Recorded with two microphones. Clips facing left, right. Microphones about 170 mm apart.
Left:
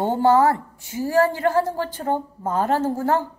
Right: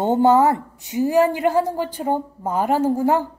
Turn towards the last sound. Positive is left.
turn(degrees=-15)  # may be behind; listen again after turning